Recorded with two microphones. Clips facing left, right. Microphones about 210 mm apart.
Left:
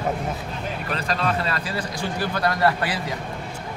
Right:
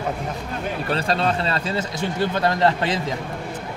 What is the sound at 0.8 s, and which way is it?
Speech, 30° right (ahead or behind).